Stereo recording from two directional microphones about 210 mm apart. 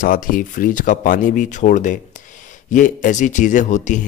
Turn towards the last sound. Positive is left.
turn(degrees=35)  # may be behind; listen again after turning